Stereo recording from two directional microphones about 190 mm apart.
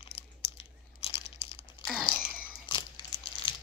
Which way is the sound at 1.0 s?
30° left (ahead or behind).